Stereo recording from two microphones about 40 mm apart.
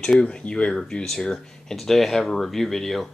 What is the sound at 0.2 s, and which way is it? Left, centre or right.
Speech, left.